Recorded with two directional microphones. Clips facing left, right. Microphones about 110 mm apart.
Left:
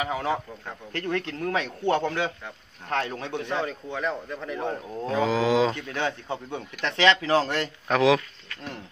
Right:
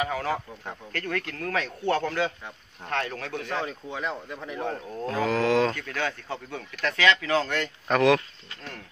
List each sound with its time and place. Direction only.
0.0 s speech: 20° left (ahead or behind)
3.3 s speech: centre (ahead or behind)
4.6 s speech: 5° left (ahead or behind)
5.7 s speech: 20° left (ahead or behind)
7.9 s speech: 5° left (ahead or behind)